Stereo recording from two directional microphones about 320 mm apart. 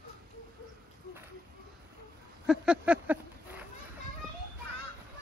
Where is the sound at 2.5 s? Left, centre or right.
Centre.